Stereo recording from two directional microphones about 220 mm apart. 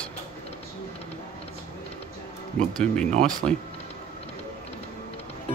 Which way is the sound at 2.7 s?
5° left (ahead or behind).